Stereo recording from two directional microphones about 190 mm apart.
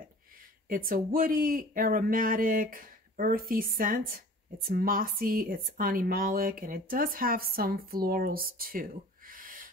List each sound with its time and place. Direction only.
0.7 s speech: 45° right (ahead or behind)